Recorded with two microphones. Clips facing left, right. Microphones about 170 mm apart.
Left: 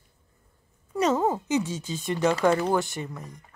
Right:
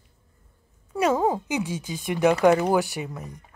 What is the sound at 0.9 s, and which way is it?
Speech, 10° right (ahead or behind).